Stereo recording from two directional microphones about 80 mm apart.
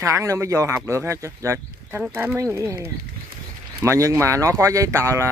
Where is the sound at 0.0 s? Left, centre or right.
Right.